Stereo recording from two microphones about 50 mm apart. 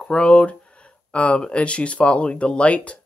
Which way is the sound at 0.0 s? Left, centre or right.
Left.